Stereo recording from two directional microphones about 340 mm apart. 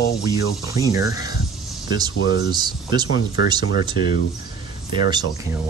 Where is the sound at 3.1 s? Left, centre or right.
Left.